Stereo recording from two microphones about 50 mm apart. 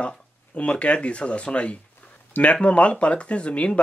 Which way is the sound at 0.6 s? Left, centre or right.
Left.